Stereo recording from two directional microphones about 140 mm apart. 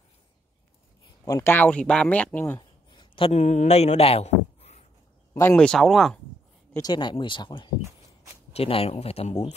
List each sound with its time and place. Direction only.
1.2 s speech: 20° left (ahead or behind)
2.9 s a sound: 35° left (ahead or behind)
3.3 s speech: 55° left (ahead or behind)
5.6 s speech: 5° left (ahead or behind)
6.7 s speech: 30° left (ahead or behind)
8.5 s speech: 45° left (ahead or behind)